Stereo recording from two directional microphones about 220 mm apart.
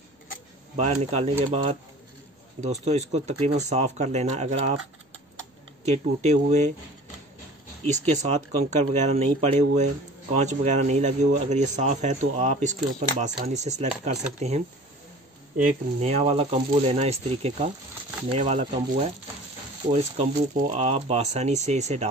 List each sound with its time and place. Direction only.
0.7 s speech: 30° right (ahead or behind)
5.9 s speech: 30° right (ahead or behind)
7.8 s speech: 30° right (ahead or behind)
19.9 s speech: 30° right (ahead or behind)